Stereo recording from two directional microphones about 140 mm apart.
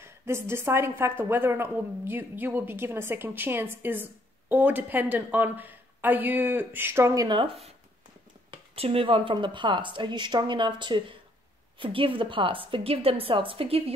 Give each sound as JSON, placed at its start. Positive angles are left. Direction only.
{"t": 0.0, "sound": "a woman's voice", "side_deg": -20}
{"t": 7.2, "sound": "speech", "side_deg": -35}